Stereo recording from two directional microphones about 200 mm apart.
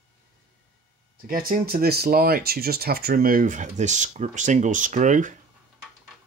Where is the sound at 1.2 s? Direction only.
45° right (ahead or behind).